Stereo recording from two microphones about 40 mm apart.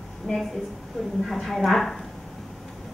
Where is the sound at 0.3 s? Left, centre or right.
Centre.